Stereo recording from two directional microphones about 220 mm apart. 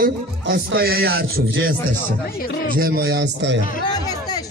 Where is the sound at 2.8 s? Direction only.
45° right (ahead or behind).